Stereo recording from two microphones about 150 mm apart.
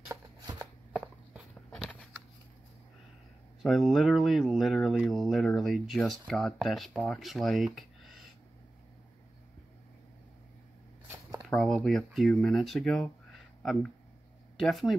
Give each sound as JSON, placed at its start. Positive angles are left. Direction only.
{"t": 0.1, "sound": "shuffling cards", "side_deg": -20}
{"t": 1.7, "sound": "a sound", "side_deg": 5}
{"t": 3.6, "sound": "speech", "side_deg": 0}
{"t": 11.4, "sound": "speech", "side_deg": 0}
{"t": 14.6, "sound": "speech", "side_deg": 0}